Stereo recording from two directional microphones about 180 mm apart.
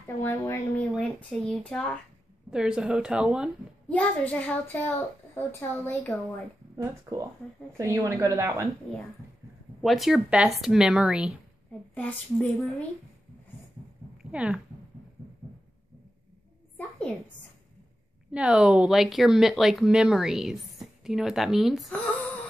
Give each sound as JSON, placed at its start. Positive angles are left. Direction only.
{"t": 0.2, "sound": "a child's voice", "side_deg": 10}
{"t": 2.5, "sound": "speech", "side_deg": -5}
{"t": 3.9, "sound": "a child's voice", "side_deg": 10}
{"t": 6.8, "sound": "a woman's voice", "side_deg": -20}
{"t": 9.8, "sound": "speech", "side_deg": 0}
{"t": 11.9, "sound": "a child's voice", "side_deg": 10}
{"t": 14.3, "sound": "speech", "side_deg": -5}
{"t": 18.3, "sound": "speech", "side_deg": -5}